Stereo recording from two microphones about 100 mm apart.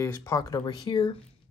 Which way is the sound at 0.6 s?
50° left (ahead or behind).